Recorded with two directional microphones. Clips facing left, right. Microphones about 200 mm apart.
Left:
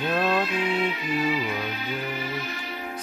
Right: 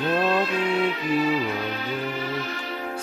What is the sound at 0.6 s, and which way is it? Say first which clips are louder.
Music: right 3 dB; 40° right (ahead or behind).